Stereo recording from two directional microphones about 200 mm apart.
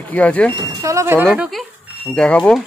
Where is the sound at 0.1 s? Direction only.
5° left (ahead or behind).